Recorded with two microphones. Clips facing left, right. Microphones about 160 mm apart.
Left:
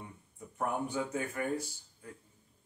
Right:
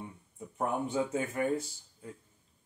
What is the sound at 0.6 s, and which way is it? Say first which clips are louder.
Speech: right 3 dB; 20° right (ahead or behind).